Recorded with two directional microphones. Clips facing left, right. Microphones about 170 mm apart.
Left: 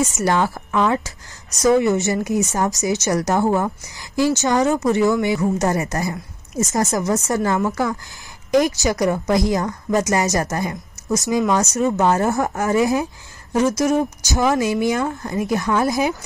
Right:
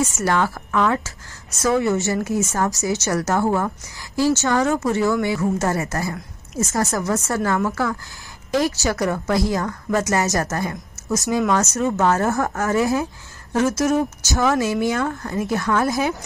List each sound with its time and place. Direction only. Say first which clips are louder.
0.2 s a woman's voice: left 2 dB; 15° left (ahead or behind)